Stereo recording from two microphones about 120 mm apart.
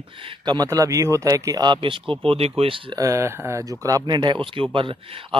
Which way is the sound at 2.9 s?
25° right (ahead or behind).